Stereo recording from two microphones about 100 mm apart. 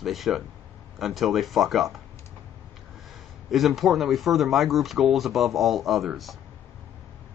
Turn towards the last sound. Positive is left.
turn(degrees=0)  # may be behind; listen again after turning